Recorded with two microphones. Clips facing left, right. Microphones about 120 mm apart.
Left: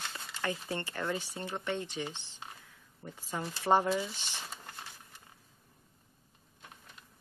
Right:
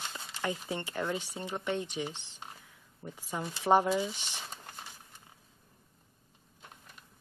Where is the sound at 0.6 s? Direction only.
15° right (ahead or behind).